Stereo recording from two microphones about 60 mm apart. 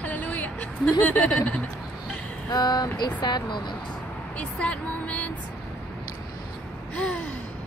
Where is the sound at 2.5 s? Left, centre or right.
Left.